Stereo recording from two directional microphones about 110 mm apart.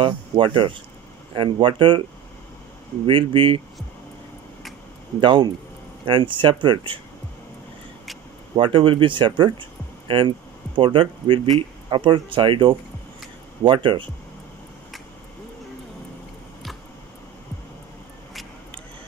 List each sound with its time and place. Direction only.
0.0 s speech: 50° right (ahead or behind)
3.1 s speech: 50° right (ahead or behind)
5.2 s speech: 45° right (ahead or behind)
8.5 s speech: 50° right (ahead or behind)